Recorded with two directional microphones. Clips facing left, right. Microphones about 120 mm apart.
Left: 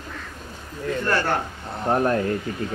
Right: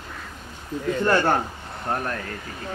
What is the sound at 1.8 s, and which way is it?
Speech, 25° left (ahead or behind).